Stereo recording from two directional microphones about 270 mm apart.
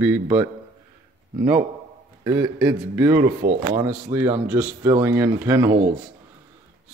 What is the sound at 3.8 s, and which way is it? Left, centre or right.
Speech, centre.